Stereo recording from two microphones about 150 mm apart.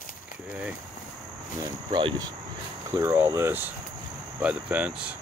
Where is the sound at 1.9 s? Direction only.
30° right (ahead or behind).